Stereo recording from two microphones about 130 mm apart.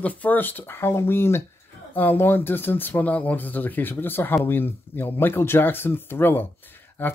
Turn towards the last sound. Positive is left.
turn(degrees=15)  # may be behind; listen again after turning